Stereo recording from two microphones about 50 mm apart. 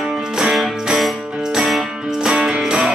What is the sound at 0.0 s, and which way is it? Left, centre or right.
Music, centre.